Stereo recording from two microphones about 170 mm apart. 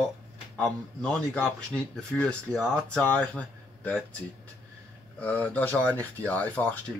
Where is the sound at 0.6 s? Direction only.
5° left (ahead or behind).